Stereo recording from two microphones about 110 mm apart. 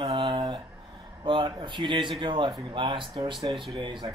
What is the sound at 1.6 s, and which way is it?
Speech, 45° right (ahead or behind).